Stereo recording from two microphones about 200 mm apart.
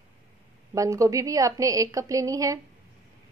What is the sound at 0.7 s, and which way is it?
A woman's voice, 15° right (ahead or behind).